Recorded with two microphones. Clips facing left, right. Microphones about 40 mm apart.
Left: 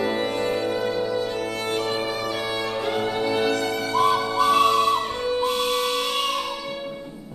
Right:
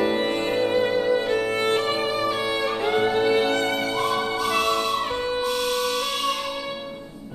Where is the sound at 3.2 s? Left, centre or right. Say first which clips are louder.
Right 2 dB; right.